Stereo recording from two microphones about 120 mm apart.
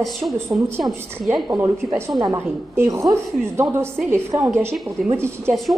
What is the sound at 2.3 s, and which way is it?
A woman's voice, 20° right (ahead or behind).